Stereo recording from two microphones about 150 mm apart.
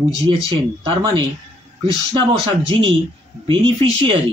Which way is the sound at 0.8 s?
30° right (ahead or behind).